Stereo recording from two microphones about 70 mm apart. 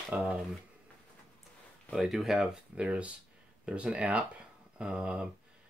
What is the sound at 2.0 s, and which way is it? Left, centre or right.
Speech, centre.